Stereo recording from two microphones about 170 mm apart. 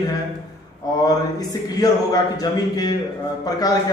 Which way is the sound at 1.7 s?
20° left (ahead or behind).